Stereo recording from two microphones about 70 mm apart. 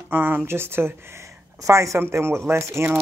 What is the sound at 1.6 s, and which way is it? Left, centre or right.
Speech, right.